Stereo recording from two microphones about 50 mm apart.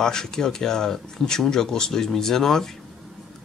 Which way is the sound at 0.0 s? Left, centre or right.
Centre.